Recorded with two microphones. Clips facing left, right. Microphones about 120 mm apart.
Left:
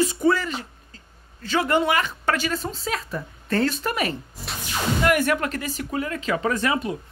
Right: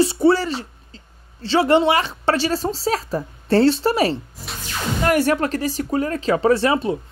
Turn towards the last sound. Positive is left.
turn(degrees=-30)  # may be behind; listen again after turning